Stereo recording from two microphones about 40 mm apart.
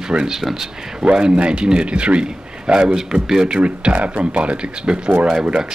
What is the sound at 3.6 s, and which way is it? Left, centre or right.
Speech, right.